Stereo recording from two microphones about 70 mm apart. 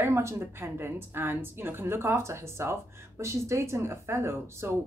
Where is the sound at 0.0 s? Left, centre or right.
Right.